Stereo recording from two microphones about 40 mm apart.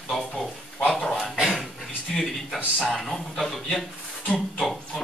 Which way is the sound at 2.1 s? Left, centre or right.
Centre.